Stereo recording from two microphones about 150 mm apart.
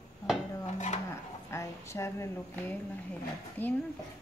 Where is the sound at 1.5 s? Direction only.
20° left (ahead or behind).